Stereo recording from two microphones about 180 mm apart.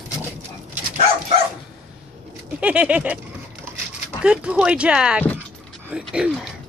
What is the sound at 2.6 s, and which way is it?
Speech, 5° right (ahead or behind).